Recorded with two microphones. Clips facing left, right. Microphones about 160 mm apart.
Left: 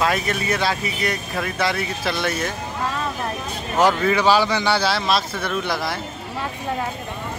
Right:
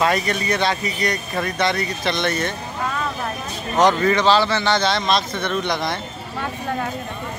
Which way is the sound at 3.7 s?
5° left (ahead or behind).